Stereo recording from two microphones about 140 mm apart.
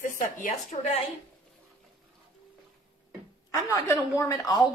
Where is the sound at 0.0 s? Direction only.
70° left (ahead or behind).